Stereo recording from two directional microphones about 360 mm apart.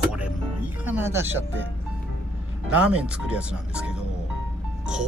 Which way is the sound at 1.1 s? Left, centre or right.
Right.